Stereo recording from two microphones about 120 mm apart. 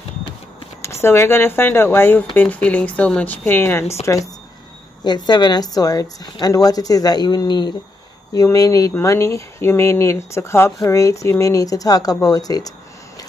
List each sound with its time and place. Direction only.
1.0 s speech: 20° left (ahead or behind)
5.0 s a woman's voice: 35° left (ahead or behind)